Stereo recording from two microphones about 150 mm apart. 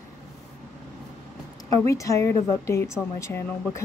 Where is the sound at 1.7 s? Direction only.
20° left (ahead or behind).